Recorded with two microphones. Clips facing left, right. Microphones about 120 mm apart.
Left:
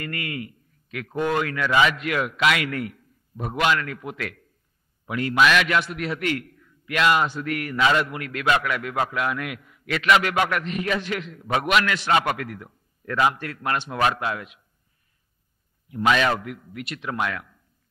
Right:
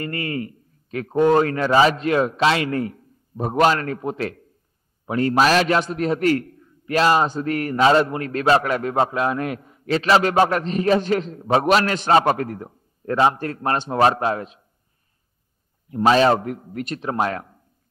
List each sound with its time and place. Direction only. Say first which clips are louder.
0.0 s a man's voice: right 5 dB; 30° right (ahead or behind)
15.9 s a man's voice: right 5 dB; 35° right (ahead or behind)